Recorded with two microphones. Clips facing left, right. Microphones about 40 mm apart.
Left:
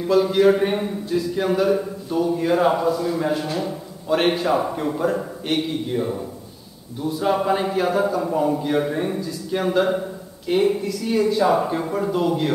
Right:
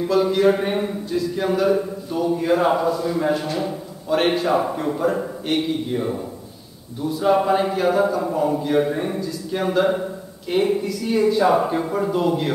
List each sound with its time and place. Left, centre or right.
0.0 s speech: centre